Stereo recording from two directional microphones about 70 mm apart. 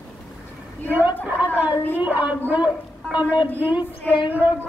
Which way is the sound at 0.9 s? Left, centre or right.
Right.